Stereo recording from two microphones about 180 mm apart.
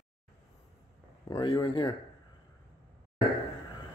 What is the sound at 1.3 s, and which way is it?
Speech, 25° left (ahead or behind).